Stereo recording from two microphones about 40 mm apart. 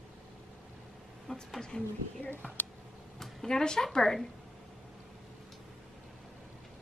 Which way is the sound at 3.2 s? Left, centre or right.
Centre.